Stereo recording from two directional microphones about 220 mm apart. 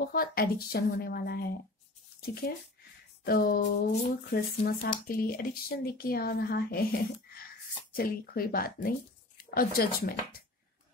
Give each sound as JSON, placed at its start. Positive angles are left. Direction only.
{"t": 0.1, "sound": "speech", "side_deg": 40}